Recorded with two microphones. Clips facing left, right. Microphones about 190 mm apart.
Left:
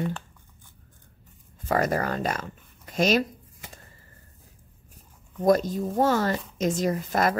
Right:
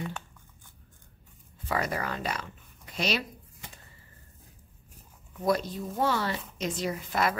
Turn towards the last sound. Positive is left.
turn(degrees=45)  # may be behind; listen again after turning